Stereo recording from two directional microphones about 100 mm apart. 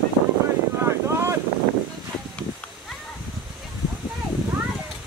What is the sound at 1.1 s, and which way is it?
Boat, 25° right (ahead or behind).